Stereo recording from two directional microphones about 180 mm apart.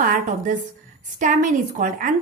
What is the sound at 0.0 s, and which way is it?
A woman's voice, 50° right (ahead or behind).